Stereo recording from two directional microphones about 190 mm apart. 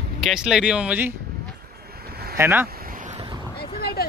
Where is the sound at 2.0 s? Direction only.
55° right (ahead or behind).